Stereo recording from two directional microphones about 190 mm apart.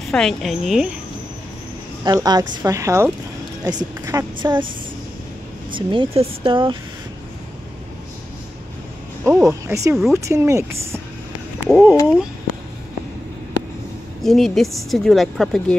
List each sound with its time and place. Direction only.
0.1 s speech: 5° left (ahead or behind)
2.0 s speech: 20° right (ahead or behind)
5.7 s speech: 25° right (ahead or behind)
9.2 s speech: 15° right (ahead or behind)
14.2 s speech: centre (ahead or behind)